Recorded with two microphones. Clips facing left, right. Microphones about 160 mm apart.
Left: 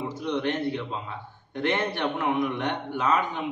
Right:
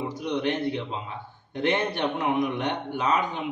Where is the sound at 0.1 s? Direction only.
15° right (ahead or behind).